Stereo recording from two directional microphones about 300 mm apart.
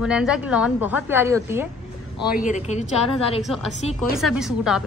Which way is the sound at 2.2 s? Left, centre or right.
Left.